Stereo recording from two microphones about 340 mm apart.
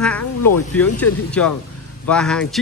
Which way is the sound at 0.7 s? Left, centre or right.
Centre.